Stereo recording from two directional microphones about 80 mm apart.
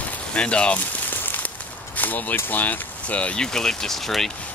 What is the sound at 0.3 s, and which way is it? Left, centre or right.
Speech, centre.